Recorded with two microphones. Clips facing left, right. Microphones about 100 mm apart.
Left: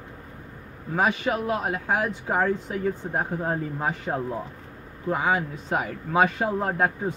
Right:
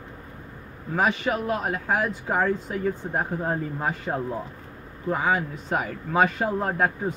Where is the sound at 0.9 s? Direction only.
20° left (ahead or behind).